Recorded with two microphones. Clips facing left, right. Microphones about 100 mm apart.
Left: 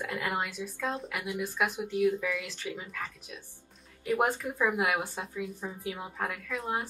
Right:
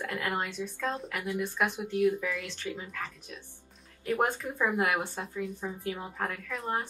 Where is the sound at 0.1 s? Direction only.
10° left (ahead or behind).